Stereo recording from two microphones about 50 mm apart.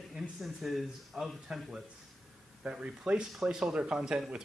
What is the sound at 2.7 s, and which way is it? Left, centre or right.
Speech, right.